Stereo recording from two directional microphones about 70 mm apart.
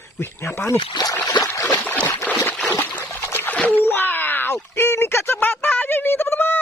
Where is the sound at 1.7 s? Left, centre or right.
Left.